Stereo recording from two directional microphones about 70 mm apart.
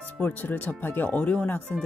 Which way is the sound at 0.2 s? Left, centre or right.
Left.